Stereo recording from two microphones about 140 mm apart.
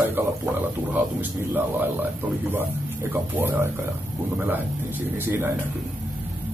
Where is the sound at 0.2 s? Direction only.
15° right (ahead or behind).